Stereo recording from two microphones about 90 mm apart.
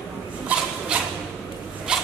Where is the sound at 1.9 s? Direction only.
10° right (ahead or behind).